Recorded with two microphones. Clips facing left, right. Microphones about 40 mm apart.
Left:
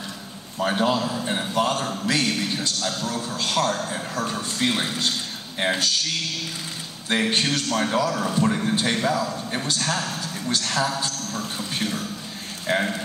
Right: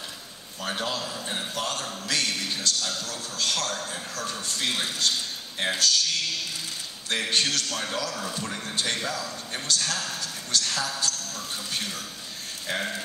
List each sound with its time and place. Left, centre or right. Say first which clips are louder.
0.6 s a sound: left 8 dB; left
3.0 s speech: left 5 dB; left
7.1 s a man's voice: left 4 dB; left
8.6 s speech: left 7 dB; left
11.3 s a sound: left 5 dB; left
12.6 s speech: left 7 dB; left